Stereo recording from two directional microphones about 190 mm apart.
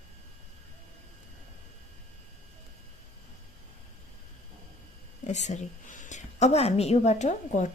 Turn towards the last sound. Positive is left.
turn(degrees=40)  # may be behind; listen again after turning